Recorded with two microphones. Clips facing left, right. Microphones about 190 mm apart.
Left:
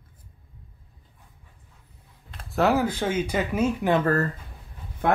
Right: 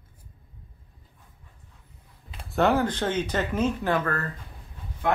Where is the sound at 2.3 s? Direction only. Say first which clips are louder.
Even; centre (ahead or behind).